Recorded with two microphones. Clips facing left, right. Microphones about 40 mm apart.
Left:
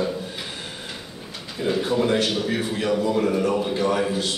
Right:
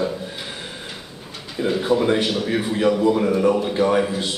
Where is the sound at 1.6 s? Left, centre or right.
Centre.